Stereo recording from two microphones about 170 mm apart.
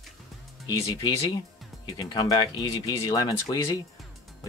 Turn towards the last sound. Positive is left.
turn(degrees=20)  # may be behind; listen again after turning